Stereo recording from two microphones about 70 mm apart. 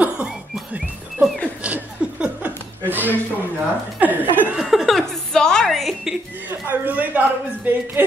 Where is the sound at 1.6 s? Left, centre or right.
Centre.